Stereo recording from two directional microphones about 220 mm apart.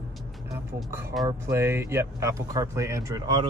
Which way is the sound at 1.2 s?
10° right (ahead or behind).